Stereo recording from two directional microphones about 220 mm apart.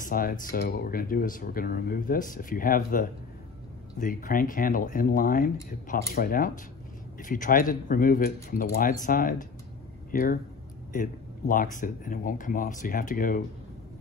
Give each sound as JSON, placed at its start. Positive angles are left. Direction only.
{"t": 0.0, "sound": "speech", "side_deg": 40}